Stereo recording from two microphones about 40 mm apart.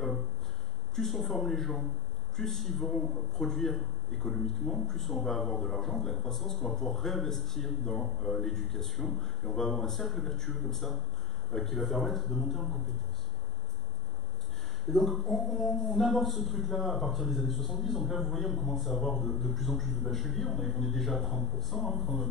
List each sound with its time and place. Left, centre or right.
0.9 s a man's voice: centre
14.9 s a man's voice: centre